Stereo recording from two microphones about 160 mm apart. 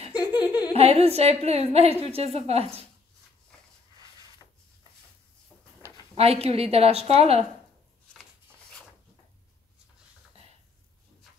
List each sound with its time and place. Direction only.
0.1 s laughter: 25° left (ahead or behind)
0.7 s a woman's voice: 40° right (ahead or behind)
6.1 s a woman's voice: 40° right (ahead or behind)